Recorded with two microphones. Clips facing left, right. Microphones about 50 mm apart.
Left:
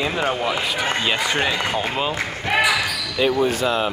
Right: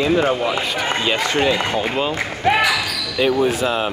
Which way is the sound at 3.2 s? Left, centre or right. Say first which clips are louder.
Right 2 dB; centre.